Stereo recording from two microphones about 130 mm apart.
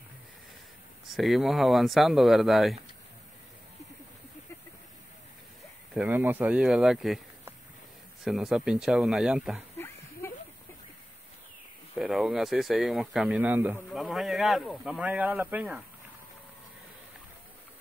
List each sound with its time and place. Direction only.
1.0 s speech: centre (ahead or behind)
5.9 s speech: 15° right (ahead or behind)
8.2 s speech: 5° right (ahead or behind)
10.2 s a sound: 20° left (ahead or behind)
11.9 s speech: 5° right (ahead or behind)
13.4 s speech: 15° right (ahead or behind)
13.9 s speech: centre (ahead or behind)